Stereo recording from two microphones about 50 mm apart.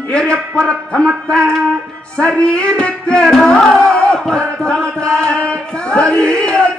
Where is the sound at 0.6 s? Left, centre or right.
Centre.